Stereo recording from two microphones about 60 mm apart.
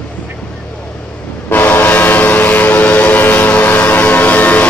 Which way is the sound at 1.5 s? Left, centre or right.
Left.